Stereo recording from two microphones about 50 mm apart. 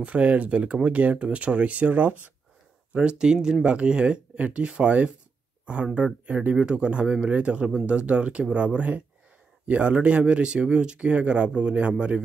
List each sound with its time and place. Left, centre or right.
0.0 s speech: right
6.2 s speech: right
6.5 s speech: centre